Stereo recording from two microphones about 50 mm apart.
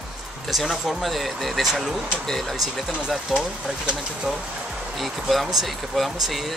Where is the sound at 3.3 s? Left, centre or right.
Centre.